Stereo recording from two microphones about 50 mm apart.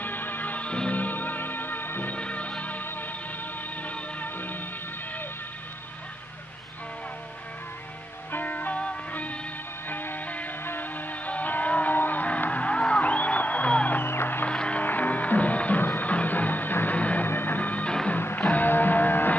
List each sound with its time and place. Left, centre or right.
0.0 s music: left
0.7 s music: left
2.1 s music: left
8.3 s music: left
9.8 s music: left
14.0 s music: left
14.4 s music: left
14.8 s music: left
17.3 s music: left